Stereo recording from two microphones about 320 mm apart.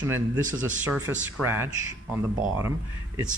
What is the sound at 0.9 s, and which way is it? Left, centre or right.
Speech, right.